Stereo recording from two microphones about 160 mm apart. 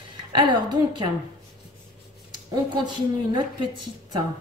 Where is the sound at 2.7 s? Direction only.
30° right (ahead or behind).